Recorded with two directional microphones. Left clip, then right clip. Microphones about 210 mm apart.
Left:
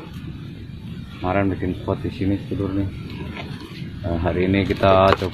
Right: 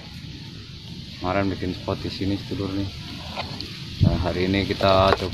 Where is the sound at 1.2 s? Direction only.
15° right (ahead or behind).